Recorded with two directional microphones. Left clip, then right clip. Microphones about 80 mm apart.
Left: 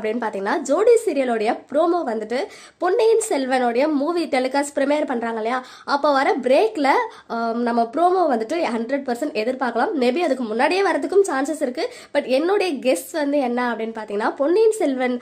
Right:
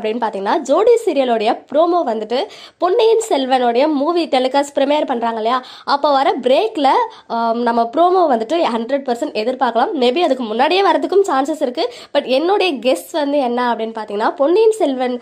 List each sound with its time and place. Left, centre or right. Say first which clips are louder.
0.2 s a woman's voice: right 5 dB; right
7.6 s a woman's voice: right 4 dB; right